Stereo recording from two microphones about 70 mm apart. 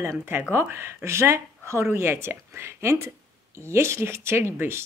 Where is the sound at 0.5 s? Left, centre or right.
Right.